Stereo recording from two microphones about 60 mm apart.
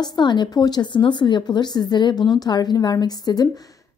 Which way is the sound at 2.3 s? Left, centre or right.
Left.